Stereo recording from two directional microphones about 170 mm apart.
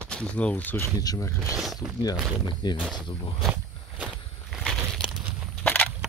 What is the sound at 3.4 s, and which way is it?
Crushing, 5° right (ahead or behind).